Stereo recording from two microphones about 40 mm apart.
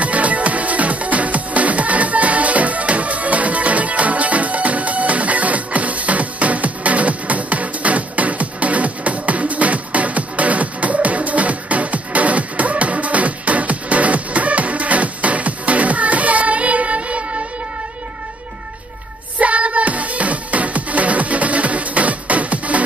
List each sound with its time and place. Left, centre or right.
0.0 s music: right
19.4 s music: right